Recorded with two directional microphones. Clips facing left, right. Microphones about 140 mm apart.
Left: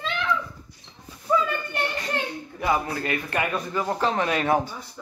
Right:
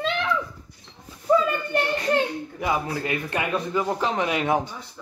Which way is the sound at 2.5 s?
5° right (ahead or behind).